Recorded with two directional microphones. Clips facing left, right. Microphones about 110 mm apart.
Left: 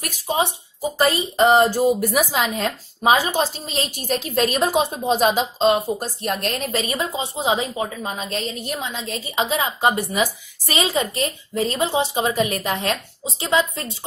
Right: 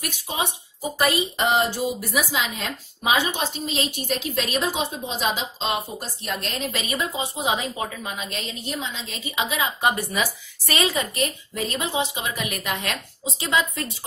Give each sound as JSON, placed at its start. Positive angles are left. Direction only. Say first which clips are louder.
{"t": 0.0, "sound": "a woman's voice", "louder": "left 6 dB", "side_deg": 40}
{"t": 10.9, "sound": "a woman's voice", "louder": "left 3 dB", "side_deg": 30}